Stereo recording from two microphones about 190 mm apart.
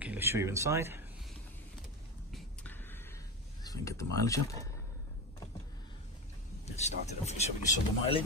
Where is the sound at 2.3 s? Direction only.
10° left (ahead or behind).